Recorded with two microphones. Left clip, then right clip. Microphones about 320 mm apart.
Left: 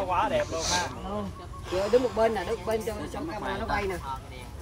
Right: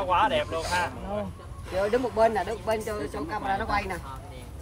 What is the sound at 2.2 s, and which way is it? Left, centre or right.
Speech, centre.